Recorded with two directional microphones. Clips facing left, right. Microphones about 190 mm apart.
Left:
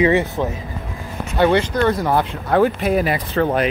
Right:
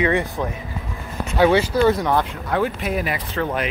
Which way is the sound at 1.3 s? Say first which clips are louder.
Even; 5° right (ahead or behind).